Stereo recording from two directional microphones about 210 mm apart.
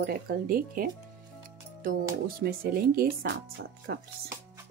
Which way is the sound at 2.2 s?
45° right (ahead or behind).